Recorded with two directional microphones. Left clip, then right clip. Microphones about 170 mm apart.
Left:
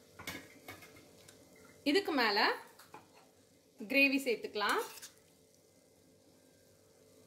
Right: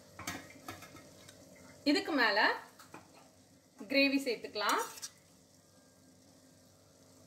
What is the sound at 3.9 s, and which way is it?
Speech, 55° left (ahead or behind).